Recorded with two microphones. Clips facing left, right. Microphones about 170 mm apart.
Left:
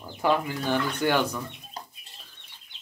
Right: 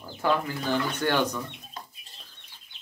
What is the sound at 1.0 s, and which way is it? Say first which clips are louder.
Speech: left 1 dB; 10° left (ahead or behind).